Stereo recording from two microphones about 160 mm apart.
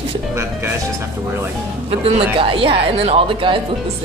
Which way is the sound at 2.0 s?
35° right (ahead or behind).